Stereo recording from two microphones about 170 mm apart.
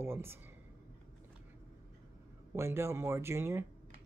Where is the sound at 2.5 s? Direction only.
15° right (ahead or behind).